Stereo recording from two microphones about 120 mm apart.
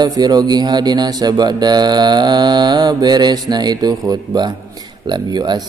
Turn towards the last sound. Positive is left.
turn(degrees=-35)  # may be behind; listen again after turning